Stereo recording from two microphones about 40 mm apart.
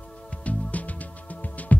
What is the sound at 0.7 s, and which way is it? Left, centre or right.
Music, left.